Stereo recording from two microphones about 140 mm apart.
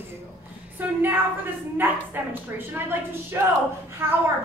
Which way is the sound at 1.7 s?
15° right (ahead or behind).